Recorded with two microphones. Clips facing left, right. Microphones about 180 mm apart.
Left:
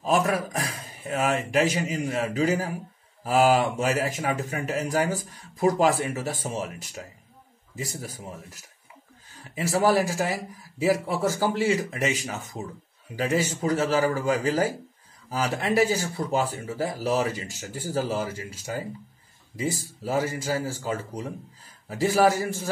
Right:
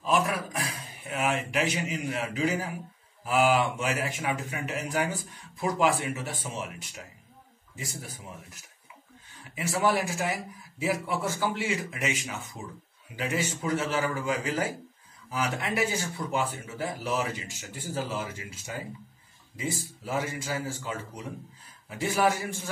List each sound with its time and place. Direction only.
0.0 s a man's voice: 40° left (ahead or behind)
7.7 s speech: 40° left (ahead or behind)
9.7 s speech: 35° left (ahead or behind)